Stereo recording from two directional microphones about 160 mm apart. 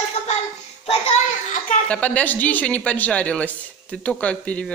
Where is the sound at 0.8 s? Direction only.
40° left (ahead or behind).